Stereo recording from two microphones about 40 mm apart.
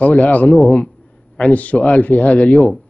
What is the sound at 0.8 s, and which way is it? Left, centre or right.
A man's voice, left.